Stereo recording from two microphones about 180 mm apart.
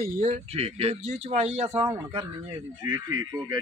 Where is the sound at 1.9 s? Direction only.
20° right (ahead or behind).